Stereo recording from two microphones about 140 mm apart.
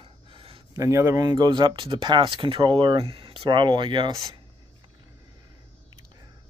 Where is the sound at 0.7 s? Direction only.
20° right (ahead or behind).